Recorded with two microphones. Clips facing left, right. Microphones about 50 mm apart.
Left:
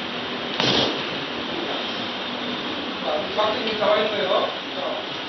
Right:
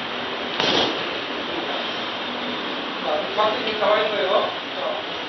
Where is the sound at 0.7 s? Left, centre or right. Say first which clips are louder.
Right 1 dB; centre.